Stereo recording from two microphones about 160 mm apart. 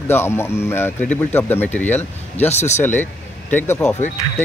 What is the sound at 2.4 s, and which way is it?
Speech, 45° left (ahead or behind).